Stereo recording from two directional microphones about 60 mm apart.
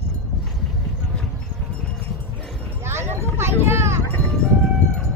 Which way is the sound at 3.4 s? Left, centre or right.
Right.